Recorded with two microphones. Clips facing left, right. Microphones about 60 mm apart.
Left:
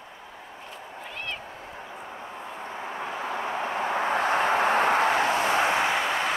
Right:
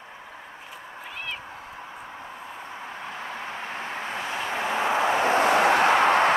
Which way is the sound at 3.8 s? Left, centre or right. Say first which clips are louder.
Left 8 dB; left.